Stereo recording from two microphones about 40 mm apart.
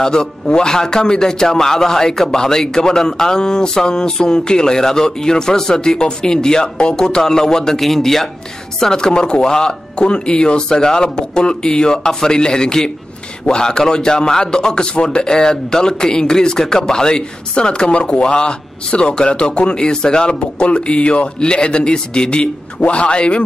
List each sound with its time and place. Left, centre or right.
0.0 s a man's voice: centre